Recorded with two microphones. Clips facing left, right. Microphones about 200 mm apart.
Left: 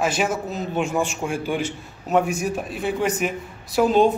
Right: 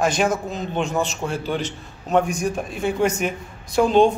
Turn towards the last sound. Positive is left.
turn(degrees=5)  # may be behind; listen again after turning